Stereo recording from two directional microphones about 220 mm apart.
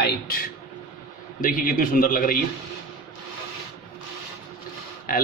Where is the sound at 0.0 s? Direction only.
40° left (ahead or behind).